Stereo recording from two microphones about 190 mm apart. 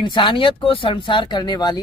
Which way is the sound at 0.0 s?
25° left (ahead or behind).